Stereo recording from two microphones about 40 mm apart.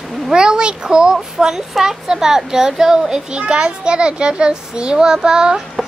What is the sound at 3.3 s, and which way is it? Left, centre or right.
A child's voice, right.